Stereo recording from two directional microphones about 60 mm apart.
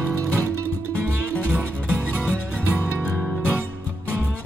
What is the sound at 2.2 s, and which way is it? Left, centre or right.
Music, left.